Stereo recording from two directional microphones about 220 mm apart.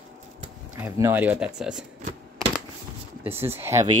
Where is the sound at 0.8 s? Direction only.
10° right (ahead or behind).